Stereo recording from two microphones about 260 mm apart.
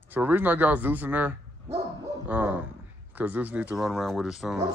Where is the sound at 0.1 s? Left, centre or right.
Centre.